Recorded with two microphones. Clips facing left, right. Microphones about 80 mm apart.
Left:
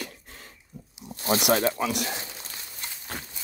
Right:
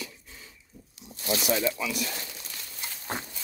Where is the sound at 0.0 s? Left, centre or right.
Left.